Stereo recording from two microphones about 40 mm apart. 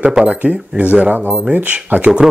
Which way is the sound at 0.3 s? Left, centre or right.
Right.